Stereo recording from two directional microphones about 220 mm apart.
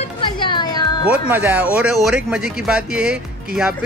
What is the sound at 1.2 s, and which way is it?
Speech, 10° right (ahead or behind).